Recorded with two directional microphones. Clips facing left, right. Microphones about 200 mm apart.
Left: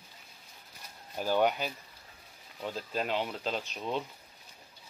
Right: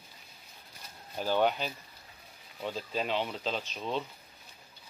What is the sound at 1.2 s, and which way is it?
Speech, 10° left (ahead or behind).